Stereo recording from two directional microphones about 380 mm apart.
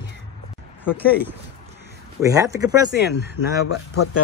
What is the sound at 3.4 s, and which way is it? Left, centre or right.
Speech, left.